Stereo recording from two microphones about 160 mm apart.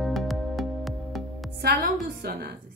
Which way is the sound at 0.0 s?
Centre (ahead or behind).